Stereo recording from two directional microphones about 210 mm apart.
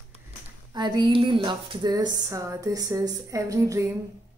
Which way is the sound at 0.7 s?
20° right (ahead or behind).